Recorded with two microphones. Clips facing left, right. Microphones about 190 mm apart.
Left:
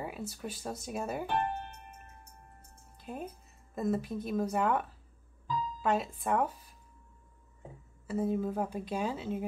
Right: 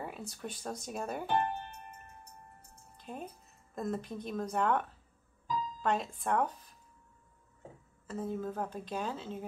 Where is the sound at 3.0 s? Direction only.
5° left (ahead or behind).